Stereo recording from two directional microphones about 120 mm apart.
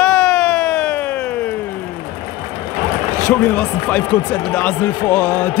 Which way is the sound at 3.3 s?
10° left (ahead or behind).